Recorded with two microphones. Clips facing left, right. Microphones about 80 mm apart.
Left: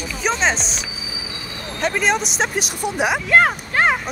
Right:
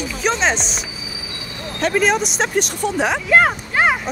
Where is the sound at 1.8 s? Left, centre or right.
Centre.